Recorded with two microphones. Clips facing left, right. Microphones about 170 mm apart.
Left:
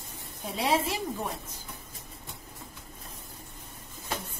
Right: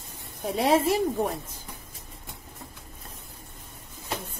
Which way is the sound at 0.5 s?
50° right (ahead or behind).